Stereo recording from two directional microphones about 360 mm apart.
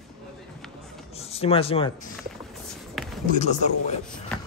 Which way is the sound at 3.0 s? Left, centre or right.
Centre.